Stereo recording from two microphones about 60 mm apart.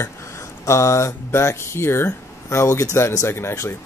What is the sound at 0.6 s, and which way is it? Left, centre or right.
Speech, left.